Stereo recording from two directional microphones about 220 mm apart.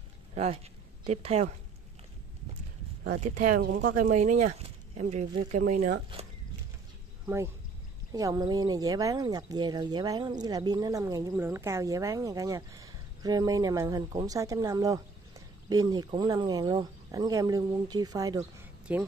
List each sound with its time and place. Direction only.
0.3 s a woman's voice: 30° right (ahead or behind)
3.2 s speech: 35° right (ahead or behind)
8.1 s a woman's voice: 15° right (ahead or behind)
18.9 s speech: 5° right (ahead or behind)